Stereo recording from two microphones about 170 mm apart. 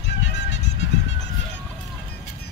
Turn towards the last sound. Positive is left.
turn(degrees=90)